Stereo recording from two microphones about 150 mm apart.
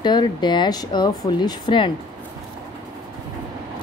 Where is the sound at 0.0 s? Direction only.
30° left (ahead or behind).